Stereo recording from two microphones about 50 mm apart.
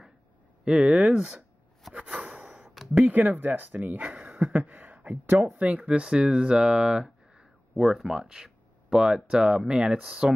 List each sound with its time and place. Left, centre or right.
0.7 s speech: centre
2.0 s a sound: right
3.1 s speech: right
3.8 s speech: right
5.9 s speech: centre
7.7 s speech: centre